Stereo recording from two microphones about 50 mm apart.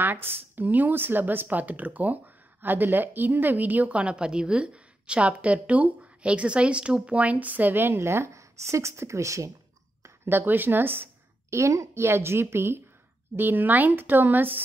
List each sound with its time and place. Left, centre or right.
0.0 s speech: right
7.2 s speech: right
10.0 s speech: right
11.5 s speech: right
13.4 s speech: right